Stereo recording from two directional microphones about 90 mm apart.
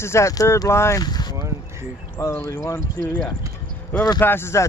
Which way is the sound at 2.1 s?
25° left (ahead or behind).